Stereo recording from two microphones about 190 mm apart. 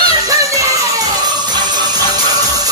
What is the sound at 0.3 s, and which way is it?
Music, 15° right (ahead or behind).